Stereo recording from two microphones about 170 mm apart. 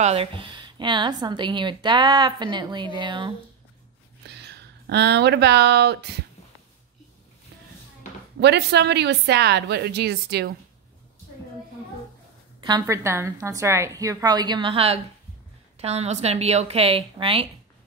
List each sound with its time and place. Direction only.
0.0 s speech: 35° right (ahead or behind)
4.4 s speech: 80° right
8.4 s a woman's voice: 80° right
12.5 s a woman's voice: 25° right (ahead or behind)